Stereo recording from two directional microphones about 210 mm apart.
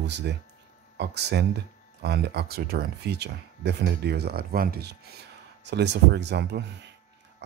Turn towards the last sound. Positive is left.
turn(degrees=-55)  # may be behind; listen again after turning